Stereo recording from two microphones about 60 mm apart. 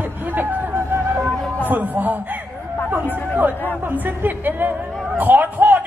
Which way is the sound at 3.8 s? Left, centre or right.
Right.